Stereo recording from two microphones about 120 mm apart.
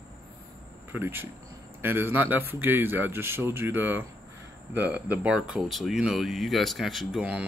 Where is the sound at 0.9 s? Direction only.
20° right (ahead or behind).